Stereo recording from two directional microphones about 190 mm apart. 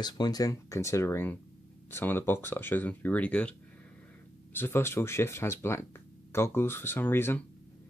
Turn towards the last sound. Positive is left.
turn(degrees=10)  # may be behind; listen again after turning